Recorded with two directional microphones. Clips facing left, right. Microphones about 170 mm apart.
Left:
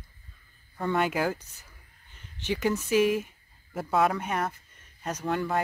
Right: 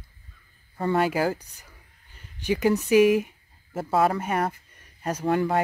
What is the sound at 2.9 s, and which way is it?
Speech, 10° right (ahead or behind).